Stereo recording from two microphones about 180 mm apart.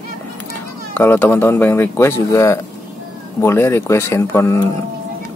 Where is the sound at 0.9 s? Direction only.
10° left (ahead or behind).